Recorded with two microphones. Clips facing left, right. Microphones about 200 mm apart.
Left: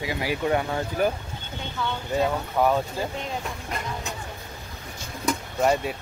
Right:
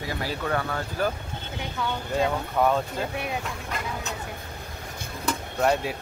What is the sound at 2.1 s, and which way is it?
Speech, centre (ahead or behind).